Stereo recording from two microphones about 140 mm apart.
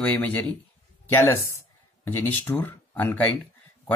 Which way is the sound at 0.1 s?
15° left (ahead or behind).